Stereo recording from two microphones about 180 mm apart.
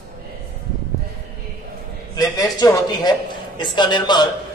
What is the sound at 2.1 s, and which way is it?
A man's voice, 20° left (ahead or behind).